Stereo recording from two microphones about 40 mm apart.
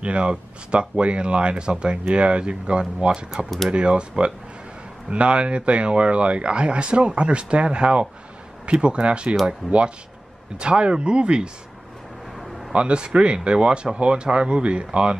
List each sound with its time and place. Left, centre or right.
0.0 s speech: right
12.4 s a sound: centre
12.7 s speech: right